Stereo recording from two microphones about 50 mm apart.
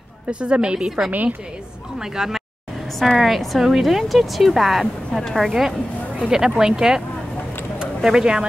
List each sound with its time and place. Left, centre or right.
0.3 s a woman's voice: right; by 5.5 s centre
5.5 s speech: centre